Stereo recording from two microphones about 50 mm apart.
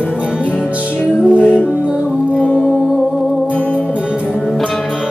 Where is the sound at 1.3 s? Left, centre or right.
Right.